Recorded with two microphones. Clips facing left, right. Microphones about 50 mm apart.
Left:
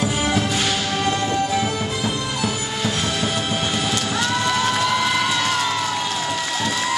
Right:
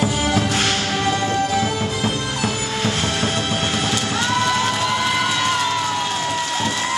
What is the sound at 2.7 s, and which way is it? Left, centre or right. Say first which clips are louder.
Music: right 2 dB; right.